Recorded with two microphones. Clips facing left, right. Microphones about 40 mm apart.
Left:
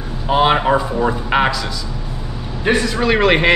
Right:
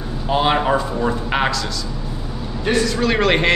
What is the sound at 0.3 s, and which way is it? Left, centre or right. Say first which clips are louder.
A man's voice: left 3 dB; centre.